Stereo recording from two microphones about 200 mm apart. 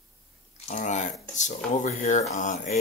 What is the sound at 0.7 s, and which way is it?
Speech, 35° left (ahead or behind).